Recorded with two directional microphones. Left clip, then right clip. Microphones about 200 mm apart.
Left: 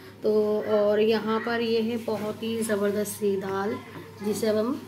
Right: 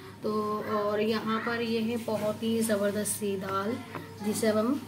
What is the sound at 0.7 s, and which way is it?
A woman's voice, 20° left (ahead or behind).